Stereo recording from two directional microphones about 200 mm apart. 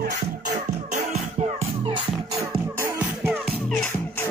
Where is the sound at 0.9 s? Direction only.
35° right (ahead or behind).